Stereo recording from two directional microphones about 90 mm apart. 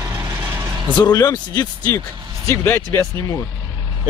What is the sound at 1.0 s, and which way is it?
Speech, 45° left (ahead or behind).